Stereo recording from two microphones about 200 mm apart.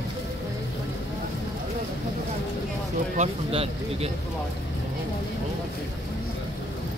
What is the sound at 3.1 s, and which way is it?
Speech, 30° right (ahead or behind).